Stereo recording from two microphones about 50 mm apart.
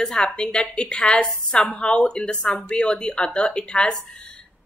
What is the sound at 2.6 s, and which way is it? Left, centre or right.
A woman's voice, left.